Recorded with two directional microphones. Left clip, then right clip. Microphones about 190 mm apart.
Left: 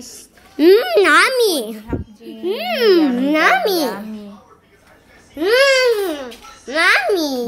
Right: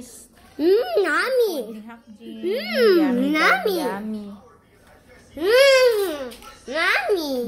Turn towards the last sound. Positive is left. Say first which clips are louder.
# left 5 dB
turn(degrees=20)  # may be behind; listen again after turning